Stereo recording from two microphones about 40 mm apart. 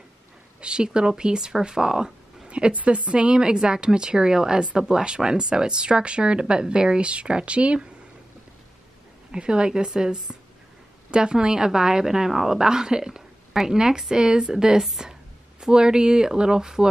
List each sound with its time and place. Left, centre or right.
0.6 s a sound: right
0.9 s a woman's voice: right
2.4 s a woman's voice: right
9.3 s a woman's voice: right